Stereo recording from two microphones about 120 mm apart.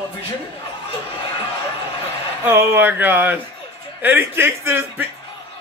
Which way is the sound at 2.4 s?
20° right (ahead or behind).